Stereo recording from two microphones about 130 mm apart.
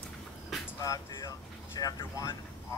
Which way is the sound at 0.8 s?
25° left (ahead or behind).